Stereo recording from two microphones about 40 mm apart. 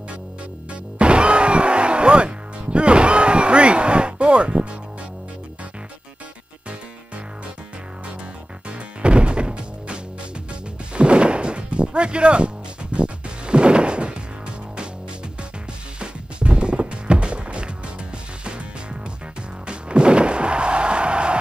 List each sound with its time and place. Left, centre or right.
0.9 s music: right
8.6 s music: right
11.0 s music: right
16.0 s music: right
19.6 s music: right